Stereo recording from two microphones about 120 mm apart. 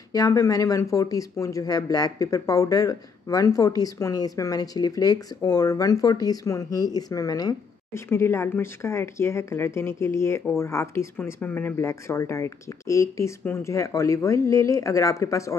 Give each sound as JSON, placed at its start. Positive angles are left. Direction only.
{"t": 0.1, "sound": "speech", "side_deg": 30}
{"t": 8.1, "sound": "speech", "side_deg": 20}